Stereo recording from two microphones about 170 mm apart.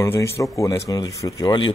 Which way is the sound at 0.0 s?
15° left (ahead or behind).